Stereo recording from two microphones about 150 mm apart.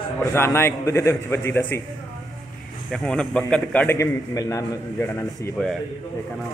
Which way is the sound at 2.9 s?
5° left (ahead or behind).